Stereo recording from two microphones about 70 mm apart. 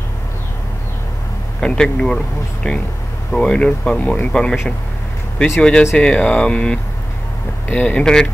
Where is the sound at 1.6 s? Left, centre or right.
Centre.